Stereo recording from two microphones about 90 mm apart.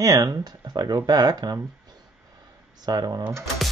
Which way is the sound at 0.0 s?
40° right (ahead or behind).